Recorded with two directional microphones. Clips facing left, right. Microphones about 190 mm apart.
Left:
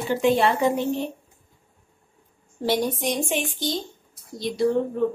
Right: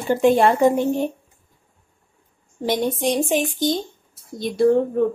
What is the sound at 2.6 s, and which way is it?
Speech, 25° right (ahead or behind).